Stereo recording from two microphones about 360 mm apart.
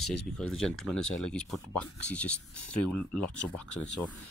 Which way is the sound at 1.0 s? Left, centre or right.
Left.